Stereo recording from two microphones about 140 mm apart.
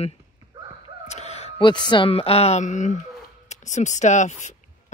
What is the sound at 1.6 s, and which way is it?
Speech, 35° left (ahead or behind).